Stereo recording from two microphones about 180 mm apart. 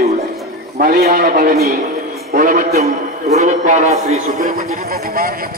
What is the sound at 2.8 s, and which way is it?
A man's voice, 35° right (ahead or behind).